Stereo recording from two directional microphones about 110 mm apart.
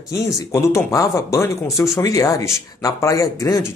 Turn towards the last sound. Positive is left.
turn(degrees=30)  # may be behind; listen again after turning